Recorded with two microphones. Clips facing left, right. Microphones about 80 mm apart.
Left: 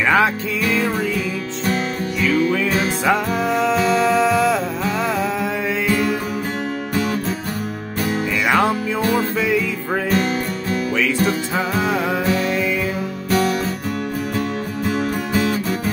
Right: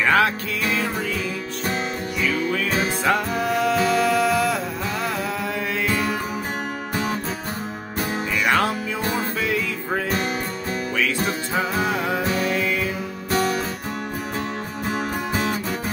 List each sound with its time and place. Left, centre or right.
0.0 s music: centre
3.1 s music: centre
8.5 s music: centre
11.5 s music: centre
14.9 s music: right